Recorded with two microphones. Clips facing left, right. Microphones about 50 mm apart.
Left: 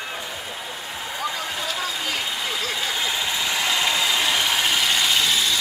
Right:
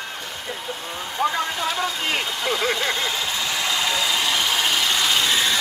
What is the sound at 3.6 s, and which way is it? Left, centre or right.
Ratchet, centre.